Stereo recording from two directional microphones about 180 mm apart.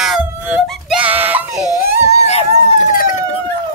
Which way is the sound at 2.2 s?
35° left (ahead or behind).